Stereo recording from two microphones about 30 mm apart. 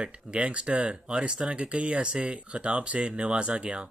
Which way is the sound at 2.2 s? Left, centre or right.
Right.